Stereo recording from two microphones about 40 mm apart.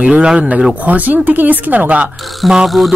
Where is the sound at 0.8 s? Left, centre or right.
Right.